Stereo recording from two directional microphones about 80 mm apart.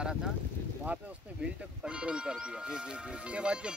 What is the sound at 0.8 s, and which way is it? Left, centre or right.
Speech, centre.